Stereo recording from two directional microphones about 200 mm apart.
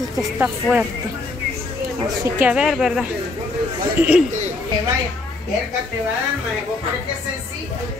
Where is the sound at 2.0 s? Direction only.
15° right (ahead or behind).